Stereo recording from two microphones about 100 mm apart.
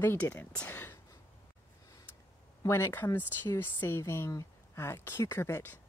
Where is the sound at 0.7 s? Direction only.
20° left (ahead or behind).